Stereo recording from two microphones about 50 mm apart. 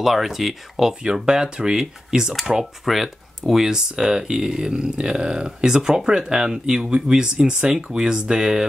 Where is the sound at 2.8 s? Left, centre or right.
Centre.